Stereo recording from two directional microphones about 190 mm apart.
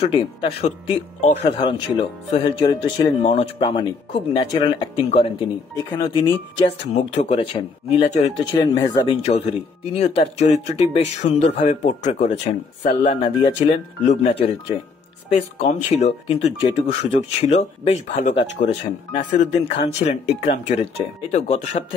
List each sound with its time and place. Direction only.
0.0 s speech: 30° left (ahead or behind)
1.6 s speech: 25° left (ahead or behind)
15.3 s speech: 35° left (ahead or behind)